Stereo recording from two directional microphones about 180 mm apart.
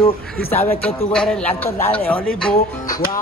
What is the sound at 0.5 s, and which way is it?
A man's voice, 10° left (ahead or behind).